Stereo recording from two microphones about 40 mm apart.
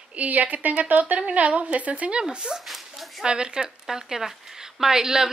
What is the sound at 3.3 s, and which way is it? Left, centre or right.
Speech, right.